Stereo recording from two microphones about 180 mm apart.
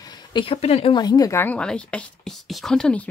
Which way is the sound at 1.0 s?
20° left (ahead or behind).